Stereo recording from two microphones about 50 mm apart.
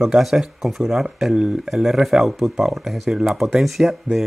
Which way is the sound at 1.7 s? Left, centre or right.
Centre.